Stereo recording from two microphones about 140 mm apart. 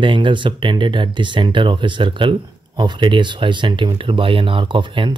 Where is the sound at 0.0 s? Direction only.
35° right (ahead or behind).